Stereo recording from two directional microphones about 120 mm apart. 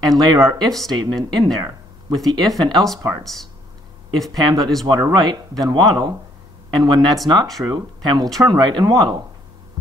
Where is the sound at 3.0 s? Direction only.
25° right (ahead or behind).